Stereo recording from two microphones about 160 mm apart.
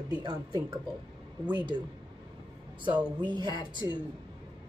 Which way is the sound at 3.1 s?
30° right (ahead or behind).